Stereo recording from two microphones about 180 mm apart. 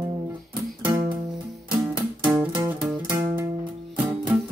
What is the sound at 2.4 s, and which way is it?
Music, 10° right (ahead or behind).